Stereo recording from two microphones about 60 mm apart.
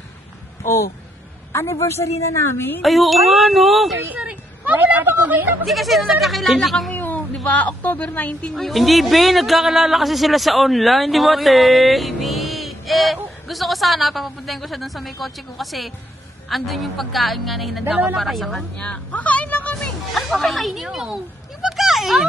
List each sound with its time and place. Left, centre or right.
1.5 s a woman's voice: left
2.8 s speech: centre
4.2 s a woman's voice: right
5.7 s speech: centre
7.0 s a sound: left
7.4 s speech: left
8.5 s speech: centre
17.8 s a woman's voice: right
18.1 s speech: centre
18.8 s speech: left
20.2 s speech: centre